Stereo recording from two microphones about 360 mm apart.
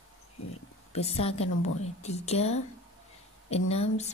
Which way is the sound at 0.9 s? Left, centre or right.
Centre.